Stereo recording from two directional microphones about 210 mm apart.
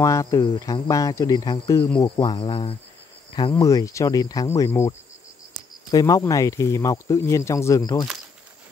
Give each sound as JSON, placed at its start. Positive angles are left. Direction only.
{"t": 0.0, "sound": "speech", "side_deg": 15}